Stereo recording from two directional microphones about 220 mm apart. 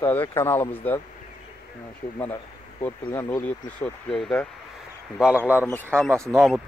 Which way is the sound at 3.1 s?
15° left (ahead or behind).